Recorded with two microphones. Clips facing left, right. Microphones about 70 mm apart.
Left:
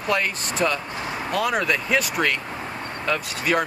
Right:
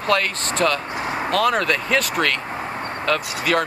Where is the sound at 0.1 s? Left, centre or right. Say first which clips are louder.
Right 3 dB; centre.